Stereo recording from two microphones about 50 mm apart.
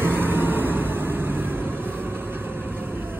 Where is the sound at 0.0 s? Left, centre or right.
Right.